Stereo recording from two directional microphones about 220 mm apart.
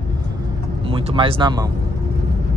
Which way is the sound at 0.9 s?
25° right (ahead or behind).